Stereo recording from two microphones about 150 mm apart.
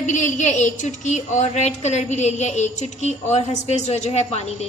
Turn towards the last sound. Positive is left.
turn(degrees=45)  # may be behind; listen again after turning